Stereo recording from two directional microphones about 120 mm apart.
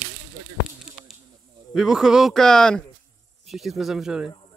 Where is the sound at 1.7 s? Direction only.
5° right (ahead or behind).